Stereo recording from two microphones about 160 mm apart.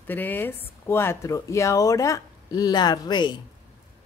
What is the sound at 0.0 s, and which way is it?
Speech, 10° left (ahead or behind).